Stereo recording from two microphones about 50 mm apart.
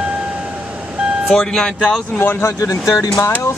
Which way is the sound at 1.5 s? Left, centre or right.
Centre.